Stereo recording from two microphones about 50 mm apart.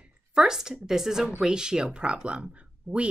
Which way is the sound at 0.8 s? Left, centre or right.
Centre.